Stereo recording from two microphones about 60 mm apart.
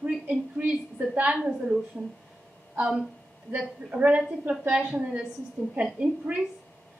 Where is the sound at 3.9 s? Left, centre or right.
Right.